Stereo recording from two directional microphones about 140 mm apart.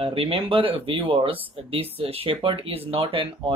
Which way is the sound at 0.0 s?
40° right (ahead or behind).